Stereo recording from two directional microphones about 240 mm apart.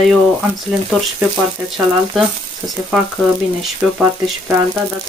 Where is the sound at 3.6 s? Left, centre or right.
Centre.